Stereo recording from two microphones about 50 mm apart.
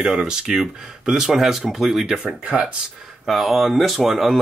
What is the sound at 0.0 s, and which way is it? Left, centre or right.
Speech, centre.